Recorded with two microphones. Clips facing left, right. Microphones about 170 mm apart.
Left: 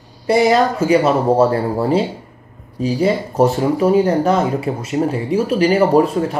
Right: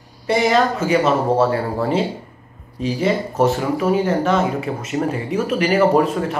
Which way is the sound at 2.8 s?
35° left (ahead or behind).